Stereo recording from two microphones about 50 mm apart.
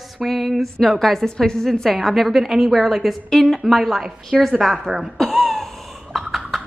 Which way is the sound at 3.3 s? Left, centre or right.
Centre.